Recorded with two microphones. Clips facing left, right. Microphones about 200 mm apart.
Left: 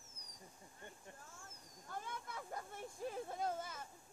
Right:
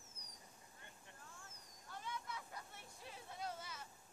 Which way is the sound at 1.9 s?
50° left (ahead or behind).